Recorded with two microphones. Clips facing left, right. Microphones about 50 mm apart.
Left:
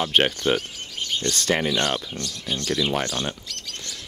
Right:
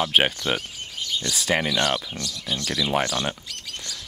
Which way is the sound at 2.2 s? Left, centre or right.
Left.